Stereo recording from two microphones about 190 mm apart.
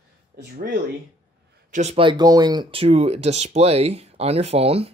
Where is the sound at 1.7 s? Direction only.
35° right (ahead or behind).